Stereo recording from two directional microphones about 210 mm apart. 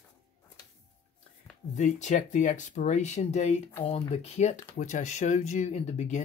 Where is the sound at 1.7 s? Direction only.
35° left (ahead or behind).